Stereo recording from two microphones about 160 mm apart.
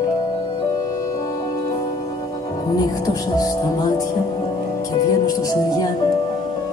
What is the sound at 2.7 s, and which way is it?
Music, 20° left (ahead or behind).